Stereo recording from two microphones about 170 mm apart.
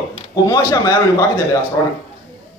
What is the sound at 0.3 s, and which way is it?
A man's voice, 20° left (ahead or behind).